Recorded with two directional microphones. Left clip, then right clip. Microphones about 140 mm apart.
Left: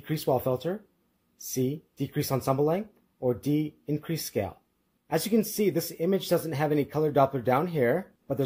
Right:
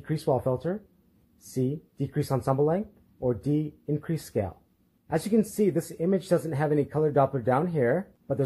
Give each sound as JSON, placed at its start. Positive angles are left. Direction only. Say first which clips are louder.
{"t": 0.0, "sound": "speech", "louder": "even", "side_deg": 40}